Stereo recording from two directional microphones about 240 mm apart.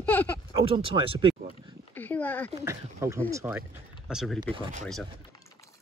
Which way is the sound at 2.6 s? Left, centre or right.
Centre.